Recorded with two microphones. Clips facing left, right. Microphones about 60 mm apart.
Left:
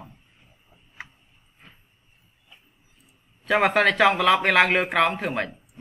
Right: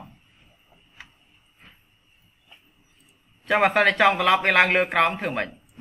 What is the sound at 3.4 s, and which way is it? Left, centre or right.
Speech, centre.